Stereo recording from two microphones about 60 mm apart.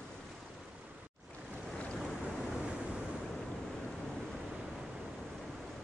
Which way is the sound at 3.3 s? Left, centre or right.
Centre.